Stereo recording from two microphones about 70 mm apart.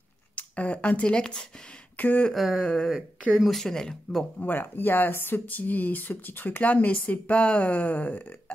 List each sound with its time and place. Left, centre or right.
0.4 s speech: centre
2.0 s speech: left
2.3 s speech: centre
2.6 s speech: centre
4.4 s speech: left